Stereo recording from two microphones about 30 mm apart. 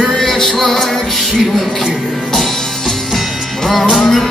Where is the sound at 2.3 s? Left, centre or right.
Centre.